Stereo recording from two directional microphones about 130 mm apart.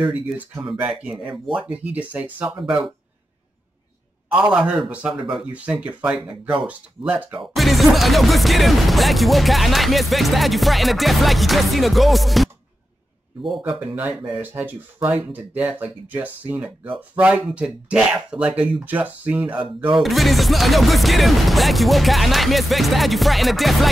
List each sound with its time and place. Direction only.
0.7 s speech: 10° right (ahead or behind)
4.3 s speech: 5° right (ahead or behind)
13.7 s speech: 10° right (ahead or behind)
19.6 s speech: 40° right (ahead or behind)
20.0 s speech: centre (ahead or behind)